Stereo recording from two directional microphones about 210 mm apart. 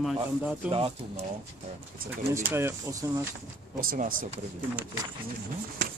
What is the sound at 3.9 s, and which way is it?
Speech, 40° right (ahead or behind).